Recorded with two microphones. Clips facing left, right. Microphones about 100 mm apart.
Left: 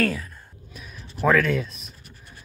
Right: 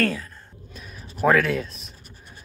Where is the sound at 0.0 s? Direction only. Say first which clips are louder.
Even; 5° left (ahead or behind).